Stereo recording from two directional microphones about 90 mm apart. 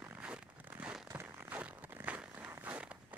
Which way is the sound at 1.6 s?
15° right (ahead or behind).